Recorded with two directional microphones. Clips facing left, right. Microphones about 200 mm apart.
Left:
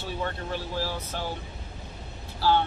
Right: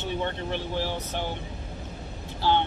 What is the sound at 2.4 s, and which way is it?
Speech, 20° right (ahead or behind).